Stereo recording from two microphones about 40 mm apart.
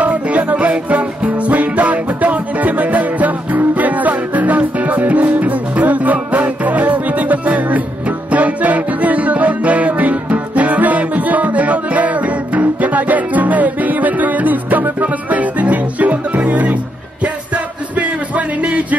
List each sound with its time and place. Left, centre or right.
0.0 s music: right
17.9 s music: right